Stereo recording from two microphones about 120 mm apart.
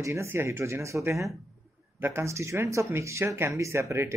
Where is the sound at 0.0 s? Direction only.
20° right (ahead or behind).